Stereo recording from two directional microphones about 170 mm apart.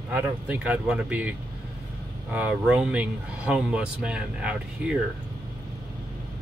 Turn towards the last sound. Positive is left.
turn(degrees=-5)  # may be behind; listen again after turning